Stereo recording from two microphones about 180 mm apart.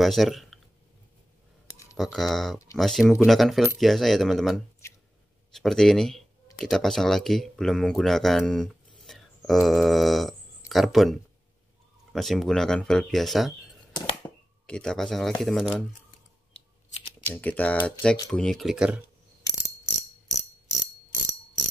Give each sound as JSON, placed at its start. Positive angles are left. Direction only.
{"t": 0.0, "sound": "speech", "side_deg": 0}
{"t": 2.0, "sound": "speech", "side_deg": 0}
{"t": 4.8, "sound": "a sound", "side_deg": 15}
{"t": 5.5, "sound": "speech", "side_deg": 0}
{"t": 14.2, "sound": "a sound", "side_deg": 5}
{"t": 15.4, "sound": "speech", "side_deg": 0}
{"t": 17.2, "sound": "speech", "side_deg": 10}